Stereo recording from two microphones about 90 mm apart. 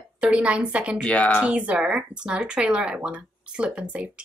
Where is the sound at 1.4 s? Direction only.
15° right (ahead or behind).